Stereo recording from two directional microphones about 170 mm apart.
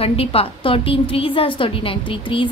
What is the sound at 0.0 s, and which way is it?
A woman's voice, 35° left (ahead or behind).